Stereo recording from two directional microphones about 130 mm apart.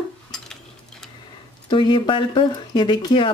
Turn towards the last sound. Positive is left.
turn(degrees=40)  # may be behind; listen again after turning